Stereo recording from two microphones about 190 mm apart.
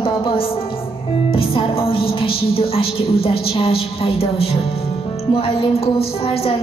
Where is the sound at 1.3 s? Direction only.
30° left (ahead or behind).